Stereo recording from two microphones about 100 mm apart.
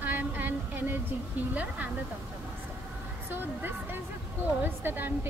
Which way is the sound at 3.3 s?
20° right (ahead or behind).